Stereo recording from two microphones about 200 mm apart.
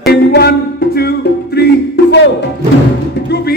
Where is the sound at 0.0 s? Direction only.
55° left (ahead or behind).